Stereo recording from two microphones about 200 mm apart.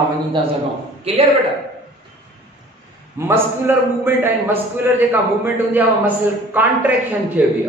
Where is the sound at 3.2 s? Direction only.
15° right (ahead or behind).